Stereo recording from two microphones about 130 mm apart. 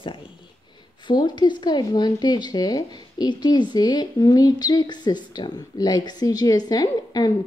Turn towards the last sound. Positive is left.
turn(degrees=30)  # may be behind; listen again after turning